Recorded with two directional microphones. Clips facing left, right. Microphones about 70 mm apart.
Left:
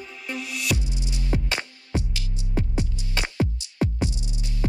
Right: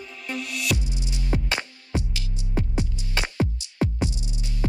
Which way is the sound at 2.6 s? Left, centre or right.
Right.